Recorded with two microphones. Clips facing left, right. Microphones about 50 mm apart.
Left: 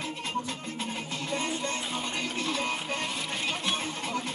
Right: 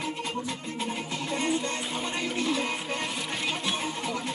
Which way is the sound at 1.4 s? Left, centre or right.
Right.